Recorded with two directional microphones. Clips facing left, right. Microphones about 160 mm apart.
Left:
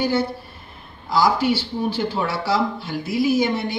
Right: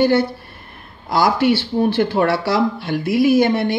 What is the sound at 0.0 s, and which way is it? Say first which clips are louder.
Speech: right 6 dB; 65° right (ahead or behind).